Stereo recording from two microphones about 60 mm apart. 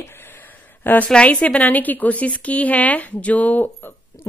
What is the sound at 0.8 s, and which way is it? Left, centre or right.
A woman's voice, left.